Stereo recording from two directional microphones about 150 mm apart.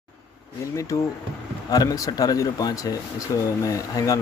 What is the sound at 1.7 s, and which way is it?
Speech, 25° left (ahead or behind).